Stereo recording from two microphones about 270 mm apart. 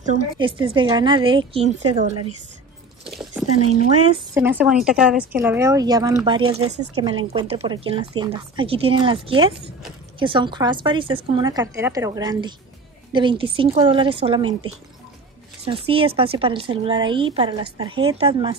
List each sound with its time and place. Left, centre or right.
0.0 s a woman's voice: right
3.1 s a sound: centre
3.8 s speech: right
4.4 s a woman's voice: centre
15.6 s speech: centre